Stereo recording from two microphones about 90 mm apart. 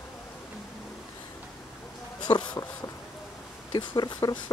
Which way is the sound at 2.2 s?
55° left (ahead or behind).